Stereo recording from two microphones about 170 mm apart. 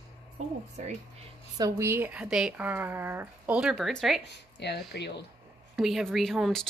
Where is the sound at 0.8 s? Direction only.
45° right (ahead or behind).